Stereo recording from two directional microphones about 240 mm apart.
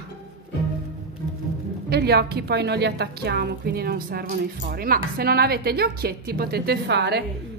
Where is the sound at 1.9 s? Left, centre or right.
Right.